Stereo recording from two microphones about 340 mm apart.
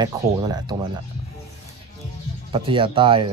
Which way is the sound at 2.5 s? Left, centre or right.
Centre.